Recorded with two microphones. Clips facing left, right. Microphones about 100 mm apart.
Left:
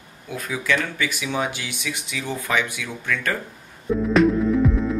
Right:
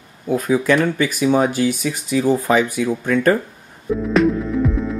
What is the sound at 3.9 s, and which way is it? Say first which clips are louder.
Music: right 1 dB; centre (ahead or behind).